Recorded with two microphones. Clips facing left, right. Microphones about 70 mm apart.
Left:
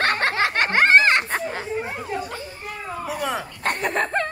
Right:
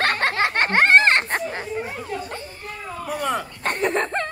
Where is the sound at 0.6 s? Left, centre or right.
Right.